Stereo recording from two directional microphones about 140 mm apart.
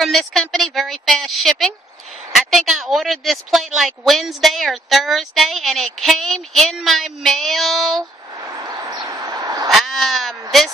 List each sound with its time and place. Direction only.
0.0 s speech: centre (ahead or behind)
8.6 s a sound: 25° right (ahead or behind)
9.7 s speech: centre (ahead or behind)